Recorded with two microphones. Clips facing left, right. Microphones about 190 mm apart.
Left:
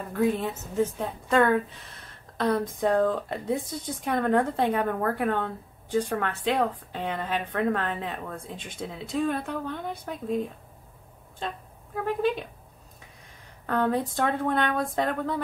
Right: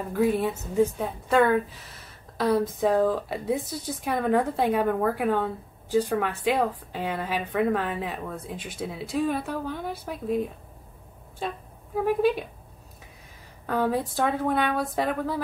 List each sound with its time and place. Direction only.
0.1 s a woman's voice: 10° right (ahead or behind)
11.4 s a woman's voice: 10° right (ahead or behind)
13.7 s a woman's voice: 5° right (ahead or behind)